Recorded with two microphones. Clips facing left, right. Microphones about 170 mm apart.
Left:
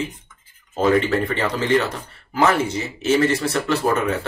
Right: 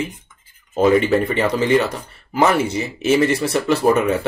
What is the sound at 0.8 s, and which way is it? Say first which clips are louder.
Speech: right 3 dB; 15° right (ahead or behind).